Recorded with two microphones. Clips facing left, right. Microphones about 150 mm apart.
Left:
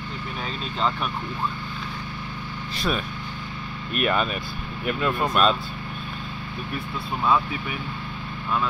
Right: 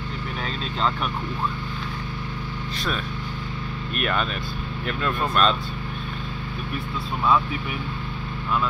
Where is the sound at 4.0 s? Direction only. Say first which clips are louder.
Left 3 dB; 5° left (ahead or behind).